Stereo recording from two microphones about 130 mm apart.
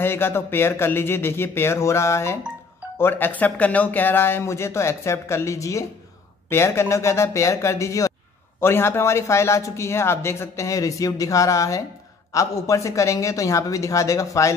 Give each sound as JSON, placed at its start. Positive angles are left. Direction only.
{"t": 0.0, "sound": "a man's voice", "side_deg": 20}